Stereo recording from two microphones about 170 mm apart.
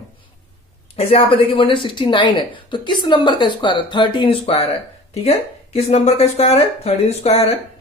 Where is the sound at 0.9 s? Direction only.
35° left (ahead or behind).